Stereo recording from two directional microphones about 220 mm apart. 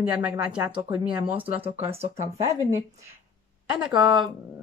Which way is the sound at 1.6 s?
25° right (ahead or behind).